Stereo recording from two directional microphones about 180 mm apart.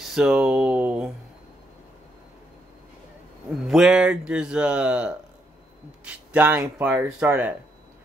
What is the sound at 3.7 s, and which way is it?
Speech, 5° right (ahead or behind).